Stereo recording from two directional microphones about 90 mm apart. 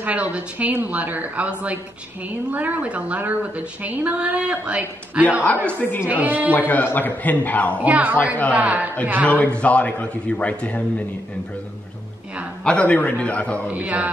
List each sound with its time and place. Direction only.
0.0 s a woman's voice: 15° right (ahead or behind)
5.7 s a man's voice: 20° left (ahead or behind)
6.0 s a woman's voice: 20° right (ahead or behind)
6.7 s a man's voice: 20° left (ahead or behind)
7.8 s a woman's voice: 15° right (ahead or behind)
9.3 s a man's voice: 15° left (ahead or behind)
12.6 s a man's voice: 15° left (ahead or behind)
13.7 s a woman's voice: 15° right (ahead or behind)